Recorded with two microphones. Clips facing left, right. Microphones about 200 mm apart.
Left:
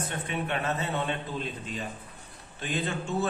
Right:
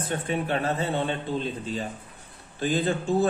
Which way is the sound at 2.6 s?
35° right (ahead or behind).